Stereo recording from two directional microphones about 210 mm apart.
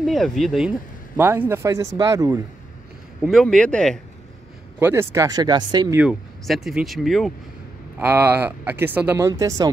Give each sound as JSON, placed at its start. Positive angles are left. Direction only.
{"t": 0.0, "sound": "speech", "side_deg": 0}
{"t": 3.2, "sound": "speech", "side_deg": 0}
{"t": 4.7, "sound": "speech", "side_deg": -10}
{"t": 5.9, "sound": "speech", "side_deg": 0}
{"t": 8.0, "sound": "speech", "side_deg": -10}